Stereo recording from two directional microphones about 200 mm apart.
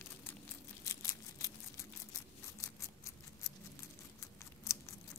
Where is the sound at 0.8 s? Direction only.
15° left (ahead or behind).